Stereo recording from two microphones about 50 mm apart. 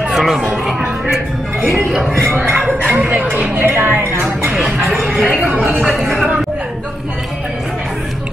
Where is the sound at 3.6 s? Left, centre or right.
Right.